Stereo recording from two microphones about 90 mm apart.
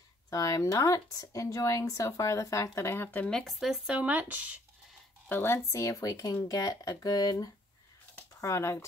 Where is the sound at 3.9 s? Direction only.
15° right (ahead or behind).